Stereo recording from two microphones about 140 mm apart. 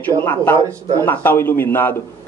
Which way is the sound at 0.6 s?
20° right (ahead or behind).